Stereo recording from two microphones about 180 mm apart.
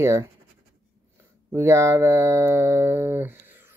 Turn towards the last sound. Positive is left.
turn(degrees=-10)  # may be behind; listen again after turning